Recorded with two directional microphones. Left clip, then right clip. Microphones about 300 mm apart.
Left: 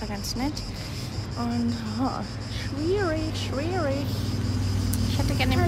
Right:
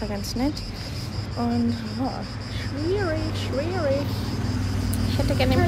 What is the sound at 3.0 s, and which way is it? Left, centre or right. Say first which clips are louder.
Speech: even; centre.